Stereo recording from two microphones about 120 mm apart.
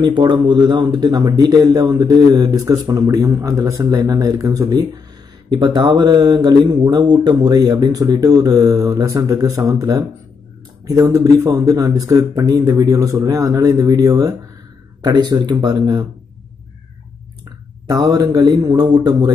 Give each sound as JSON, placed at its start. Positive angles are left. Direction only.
{"t": 0.0, "sound": "speech", "side_deg": -40}
{"t": 17.8, "sound": "speech", "side_deg": -30}